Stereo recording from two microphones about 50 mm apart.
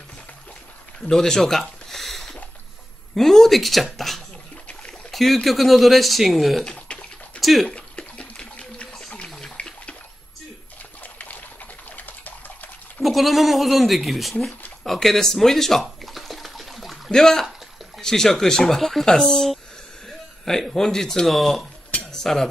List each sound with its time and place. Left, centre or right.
1.1 s speech: centre
1.6 s a sound: centre
3.2 s speech: centre
6.6 s bathtub: left
7.3 s speech: centre
7.7 s water: left
9.6 s bathtub: left
11.0 s pigeon: left
13.0 s speech: centre
14.8 s a sound: centre
17.1 s speech: centre
21.9 s dishes: centre